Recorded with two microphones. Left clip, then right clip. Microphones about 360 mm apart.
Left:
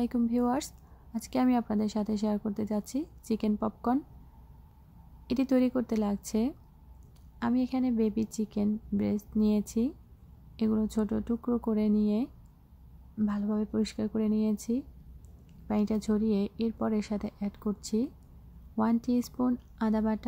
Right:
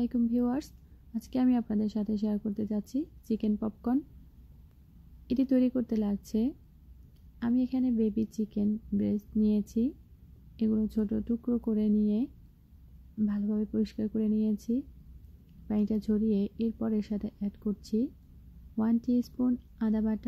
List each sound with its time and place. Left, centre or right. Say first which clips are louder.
0.0 s a woman's voice: left 1 dB; centre
5.3 s a woman's voice: even; centre